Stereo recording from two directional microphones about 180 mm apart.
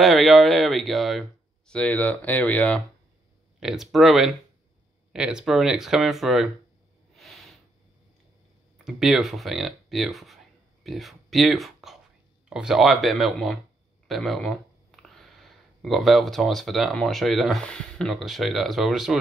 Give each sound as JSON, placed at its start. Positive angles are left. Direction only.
{"t": 0.0, "sound": "speech", "side_deg": 0}
{"t": 3.5, "sound": "speech", "side_deg": 0}
{"t": 7.2, "sound": "a sound", "side_deg": 0}
{"t": 8.8, "sound": "speech", "side_deg": 0}